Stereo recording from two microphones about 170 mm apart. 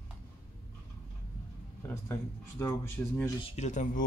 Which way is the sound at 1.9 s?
15° left (ahead or behind).